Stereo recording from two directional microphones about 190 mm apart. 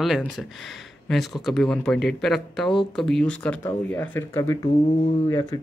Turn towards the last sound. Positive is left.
turn(degrees=20)  # may be behind; listen again after turning